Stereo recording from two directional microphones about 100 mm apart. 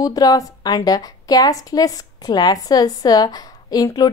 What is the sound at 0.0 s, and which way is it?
A woman's voice, 40° left (ahead or behind).